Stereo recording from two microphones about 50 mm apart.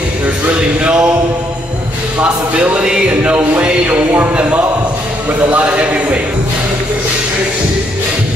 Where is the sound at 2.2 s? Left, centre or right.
Right.